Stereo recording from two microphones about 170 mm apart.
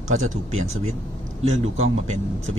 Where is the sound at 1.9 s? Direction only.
40° right (ahead or behind).